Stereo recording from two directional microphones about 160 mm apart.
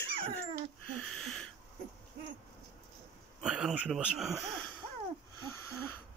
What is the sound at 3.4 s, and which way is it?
Speech, 5° right (ahead or behind).